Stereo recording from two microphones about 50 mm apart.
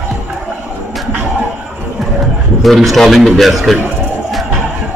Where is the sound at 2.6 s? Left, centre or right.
Centre.